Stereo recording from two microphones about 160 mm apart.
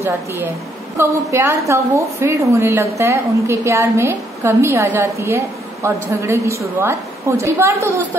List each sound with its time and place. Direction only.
0.9 s a woman's voice: 15° right (ahead or behind)